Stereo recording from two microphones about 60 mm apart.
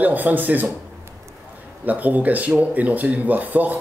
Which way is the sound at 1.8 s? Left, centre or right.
Right.